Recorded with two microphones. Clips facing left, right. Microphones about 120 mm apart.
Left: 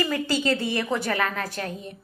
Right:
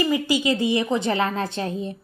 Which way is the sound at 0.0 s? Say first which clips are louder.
Right 3 dB; 15° right (ahead or behind).